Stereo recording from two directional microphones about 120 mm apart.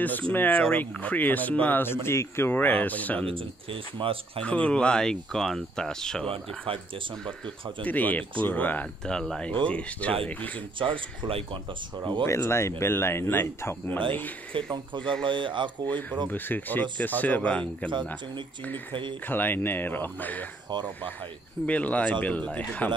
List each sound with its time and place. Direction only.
0.0 s speech: 15° left (ahead or behind)
3.3 s speech: 45° right (ahead or behind)
4.4 s speech: 10° left (ahead or behind)
6.2 s speech: 50° right (ahead or behind)
7.8 s speech: 15° left (ahead or behind)
10.8 s speech: 45° right (ahead or behind)
12.3 s speech: 20° left (ahead or behind)
15.2 s speech: 45° right (ahead or behind)
16.3 s speech: 15° left (ahead or behind)
19.2 s speech: 15° left (ahead or behind)
21.6 s speech: 10° left (ahead or behind)